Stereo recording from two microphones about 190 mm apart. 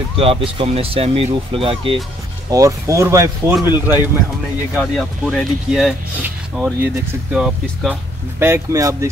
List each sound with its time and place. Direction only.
0.2 s speech: 30° right (ahead or behind)
2.5 s speech: 15° right (ahead or behind)
4.7 s speech: centre (ahead or behind)
8.4 s speech: 15° right (ahead or behind)